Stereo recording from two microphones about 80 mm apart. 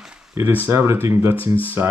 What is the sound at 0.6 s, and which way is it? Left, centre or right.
Speech, right.